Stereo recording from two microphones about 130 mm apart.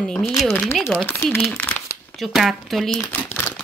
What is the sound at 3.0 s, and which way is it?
Crumpling, 15° left (ahead or behind).